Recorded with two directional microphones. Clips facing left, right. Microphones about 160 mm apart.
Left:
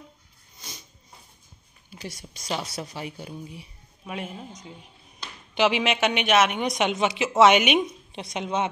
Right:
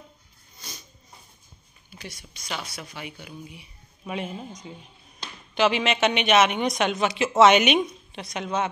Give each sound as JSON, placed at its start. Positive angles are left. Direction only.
{"t": 0.6, "sound": "a sound", "side_deg": 20}
{"t": 1.9, "sound": "speech", "side_deg": 40}
{"t": 4.0, "sound": "a man's voice", "side_deg": 0}
{"t": 5.5, "sound": "speech", "side_deg": 15}
{"t": 8.1, "sound": "a woman's voice", "side_deg": 25}